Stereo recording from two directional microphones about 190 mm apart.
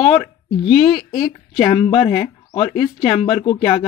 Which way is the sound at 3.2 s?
30° left (ahead or behind).